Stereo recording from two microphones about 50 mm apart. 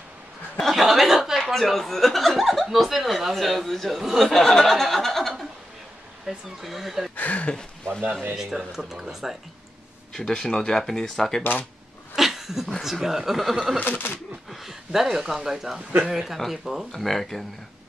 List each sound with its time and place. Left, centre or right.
0.6 s speech: centre
1.1 s a sound: centre
1.4 s speech: centre
7.2 s speech: left
7.5 s speech: centre
8.4 s speech: centre
10.1 s speech: centre
12.2 s a sound: centre
12.8 s speech: centre
13.7 s speech: left
14.5 s speech: centre